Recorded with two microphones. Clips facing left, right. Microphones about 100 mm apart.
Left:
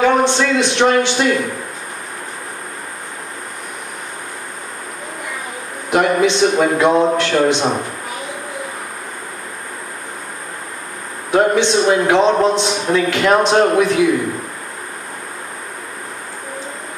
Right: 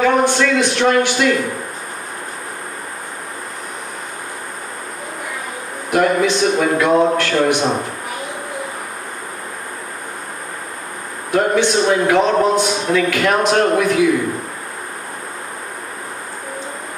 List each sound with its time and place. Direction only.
0.0 s a sound: 25° left (ahead or behind)
5.9 s a man's voice: 25° left (ahead or behind)
11.3 s a man's voice: 25° left (ahead or behind)